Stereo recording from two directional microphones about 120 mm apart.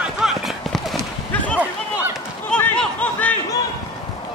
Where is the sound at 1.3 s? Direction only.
10° left (ahead or behind).